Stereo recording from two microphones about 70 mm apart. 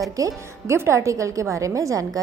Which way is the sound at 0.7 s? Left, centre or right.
Right.